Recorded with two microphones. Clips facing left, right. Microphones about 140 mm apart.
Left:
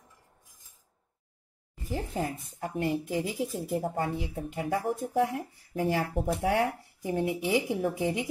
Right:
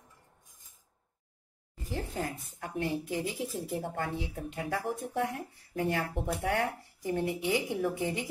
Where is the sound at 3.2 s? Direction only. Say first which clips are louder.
Left 3 dB; 25° left (ahead or behind).